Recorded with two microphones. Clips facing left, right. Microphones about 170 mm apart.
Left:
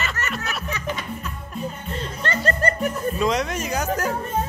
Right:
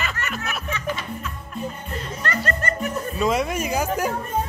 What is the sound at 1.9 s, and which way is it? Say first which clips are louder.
Music: left 1 dB; 25° left (ahead or behind).